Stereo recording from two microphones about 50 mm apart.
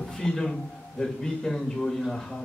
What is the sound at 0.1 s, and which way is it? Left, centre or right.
A man's voice, centre.